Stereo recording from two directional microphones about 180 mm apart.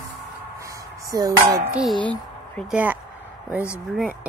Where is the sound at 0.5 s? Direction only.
15° right (ahead or behind).